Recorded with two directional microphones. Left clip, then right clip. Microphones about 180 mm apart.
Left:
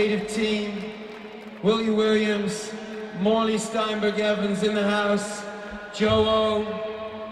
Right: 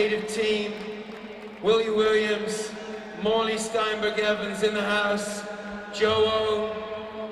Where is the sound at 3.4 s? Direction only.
40° right (ahead or behind).